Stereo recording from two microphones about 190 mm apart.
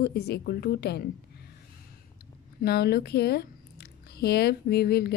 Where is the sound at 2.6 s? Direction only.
55° left (ahead or behind).